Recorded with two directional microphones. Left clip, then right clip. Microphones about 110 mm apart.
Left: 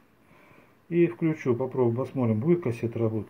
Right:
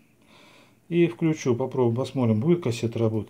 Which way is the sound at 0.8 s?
30° right (ahead or behind).